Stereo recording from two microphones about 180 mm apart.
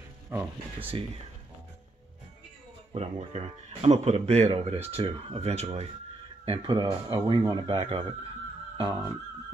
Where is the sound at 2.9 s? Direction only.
35° right (ahead or behind).